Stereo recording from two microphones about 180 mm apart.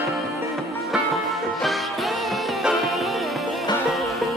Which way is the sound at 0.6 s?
Centre (ahead or behind).